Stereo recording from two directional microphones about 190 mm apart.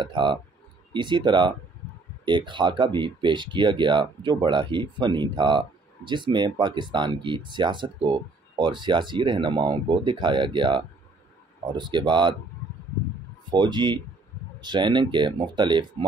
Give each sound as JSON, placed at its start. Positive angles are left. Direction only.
{"t": 0.0, "sound": "speech", "side_deg": -25}
{"t": 13.5, "sound": "speech", "side_deg": -25}